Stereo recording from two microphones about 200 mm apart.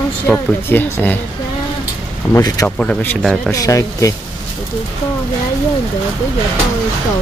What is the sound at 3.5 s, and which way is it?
Speech, 15° left (ahead or behind).